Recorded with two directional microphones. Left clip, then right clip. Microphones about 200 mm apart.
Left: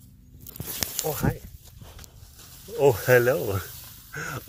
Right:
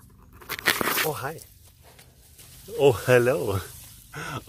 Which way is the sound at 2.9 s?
25° right (ahead or behind).